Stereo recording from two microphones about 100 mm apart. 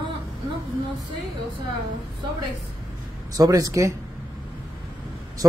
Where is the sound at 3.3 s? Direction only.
35° right (ahead or behind).